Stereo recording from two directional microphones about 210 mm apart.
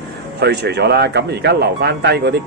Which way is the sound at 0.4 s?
50° right (ahead or behind).